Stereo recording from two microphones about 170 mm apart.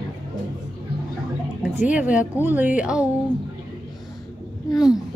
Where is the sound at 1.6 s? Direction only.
5° right (ahead or behind).